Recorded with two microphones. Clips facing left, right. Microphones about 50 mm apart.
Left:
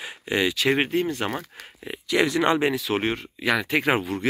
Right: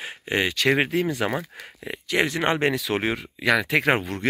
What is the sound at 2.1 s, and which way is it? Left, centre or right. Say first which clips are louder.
Speech: left 2 dB; right.